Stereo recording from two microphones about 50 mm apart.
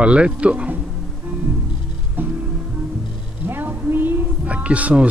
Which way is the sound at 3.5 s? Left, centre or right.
Right.